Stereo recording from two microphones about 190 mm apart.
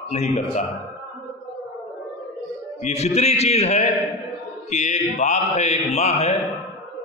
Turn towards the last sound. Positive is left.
turn(degrees=35)  # may be behind; listen again after turning